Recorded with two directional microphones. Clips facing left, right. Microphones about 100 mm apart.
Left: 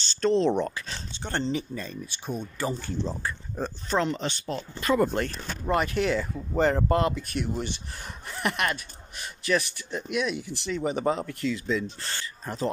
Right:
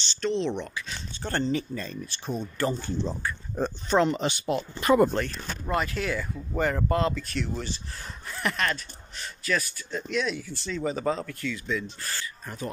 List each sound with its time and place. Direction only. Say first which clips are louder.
0.1 s speech: left 5 dB; 40° left (ahead or behind)
1.1 s speech: right 2 dB; 25° left (ahead or behind); by 5.1 s 20° right (ahead or behind)
5.2 s speech: left 2 dB; 25° left (ahead or behind)
7.0 s speech: left 1 dB; 20° left (ahead or behind)